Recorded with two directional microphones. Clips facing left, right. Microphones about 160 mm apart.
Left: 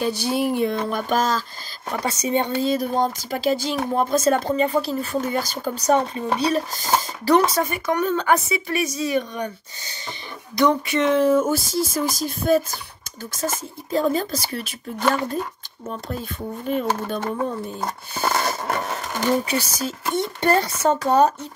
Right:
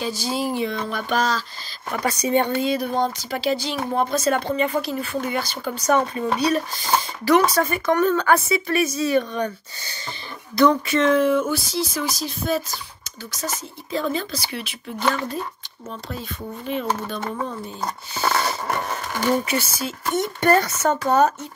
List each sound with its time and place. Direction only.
0.0 s speech: 60° left (ahead or behind)
0.8 s speech: 45° left (ahead or behind)
2.0 s speech: 25° left (ahead or behind)
2.6 s speech: 40° left (ahead or behind)
6.1 s speech: 25° left (ahead or behind)
7.6 s speech: 15° left (ahead or behind)
11.1 s speech: 40° left (ahead or behind)
16.1 s speech: 45° left (ahead or behind)
18.4 s a sound: 5° left (ahead or behind)
19.4 s speech: 35° left (ahead or behind)